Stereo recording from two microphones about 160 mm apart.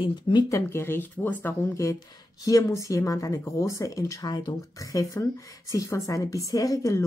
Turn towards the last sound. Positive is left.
turn(degrees=20)  # may be behind; listen again after turning